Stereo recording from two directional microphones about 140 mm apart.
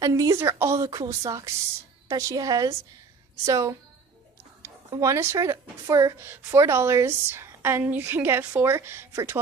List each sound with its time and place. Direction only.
0.0 s a woman's voice: 25° right (ahead or behind)